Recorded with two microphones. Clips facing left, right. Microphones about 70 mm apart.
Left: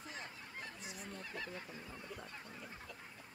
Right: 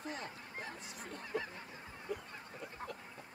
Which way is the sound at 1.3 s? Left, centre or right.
Right.